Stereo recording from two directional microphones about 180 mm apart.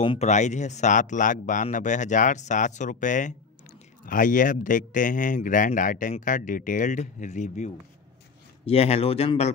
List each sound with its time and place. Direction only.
0.0 s speech: 35° left (ahead or behind)